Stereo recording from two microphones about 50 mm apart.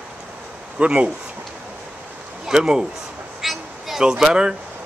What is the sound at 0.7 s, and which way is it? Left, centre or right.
Speech, right.